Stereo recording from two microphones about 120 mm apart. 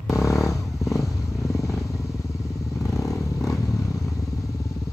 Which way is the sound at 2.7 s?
25° left (ahead or behind).